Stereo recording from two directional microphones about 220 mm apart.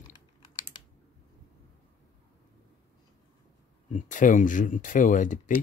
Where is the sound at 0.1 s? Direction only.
20° left (ahead or behind).